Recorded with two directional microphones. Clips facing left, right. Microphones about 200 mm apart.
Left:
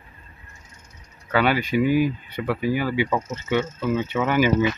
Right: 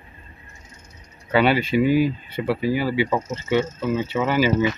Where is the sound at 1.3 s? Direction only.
15° right (ahead or behind).